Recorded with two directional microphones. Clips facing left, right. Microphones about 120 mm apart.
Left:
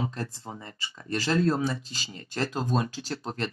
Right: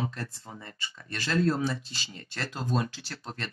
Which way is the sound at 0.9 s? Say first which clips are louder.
Left 4 dB; 30° left (ahead or behind).